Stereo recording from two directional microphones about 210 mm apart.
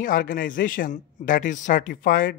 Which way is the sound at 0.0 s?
40° left (ahead or behind).